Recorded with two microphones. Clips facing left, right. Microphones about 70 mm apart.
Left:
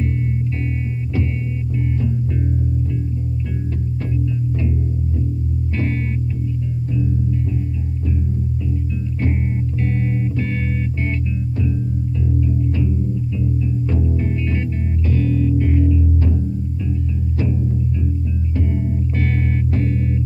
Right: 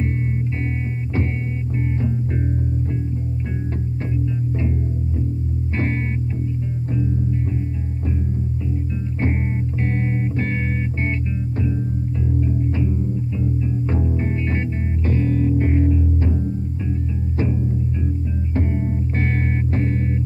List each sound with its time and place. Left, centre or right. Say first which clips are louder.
9.8 s music: left 1 dB; right
12.3 s music: left 1 dB; right
17.4 s music: even; right
18.7 s music: left 1 dB; right